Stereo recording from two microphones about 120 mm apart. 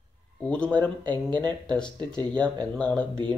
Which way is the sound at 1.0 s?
40° right (ahead or behind).